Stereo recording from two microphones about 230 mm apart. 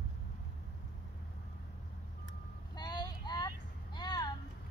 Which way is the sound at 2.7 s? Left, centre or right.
Centre.